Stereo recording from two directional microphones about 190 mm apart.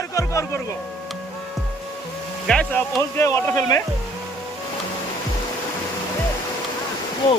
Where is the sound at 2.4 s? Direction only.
5° left (ahead or behind).